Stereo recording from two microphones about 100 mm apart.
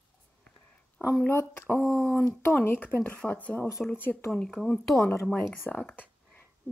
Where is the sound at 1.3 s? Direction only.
20° left (ahead or behind).